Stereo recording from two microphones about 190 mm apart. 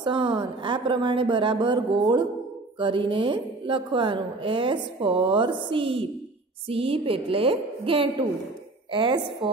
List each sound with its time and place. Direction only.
0.0 s a woman's voice: 25° right (ahead or behind)
2.8 s a woman's voice: 25° right (ahead or behind)